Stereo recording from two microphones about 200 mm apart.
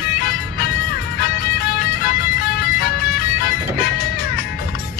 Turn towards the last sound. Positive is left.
turn(degrees=45)  # may be behind; listen again after turning